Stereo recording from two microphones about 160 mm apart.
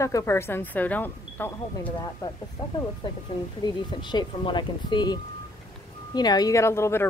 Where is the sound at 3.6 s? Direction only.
30° left (ahead or behind).